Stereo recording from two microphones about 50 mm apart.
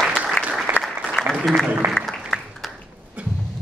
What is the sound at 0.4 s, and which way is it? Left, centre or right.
Applause, left.